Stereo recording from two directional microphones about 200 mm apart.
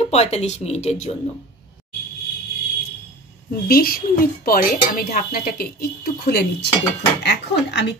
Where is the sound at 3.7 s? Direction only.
45° left (ahead or behind).